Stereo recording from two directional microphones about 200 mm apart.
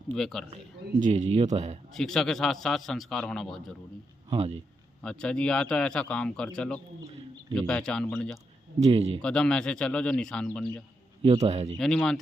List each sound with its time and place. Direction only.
0.1 s a man's voice: 5° left (ahead or behind)
0.9 s speech: 35° right (ahead or behind)
2.0 s a man's voice: centre (ahead or behind)
4.3 s speech: 30° right (ahead or behind)
5.0 s a man's voice: 5° left (ahead or behind)
8.8 s speech: 30° right (ahead or behind)
9.2 s a man's voice: 5° left (ahead or behind)
11.4 s speech: 35° right (ahead or behind)
11.8 s a man's voice: 5° left (ahead or behind)